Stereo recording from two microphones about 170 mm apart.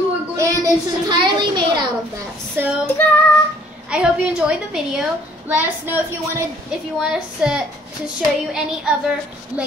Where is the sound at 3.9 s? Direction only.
5° right (ahead or behind).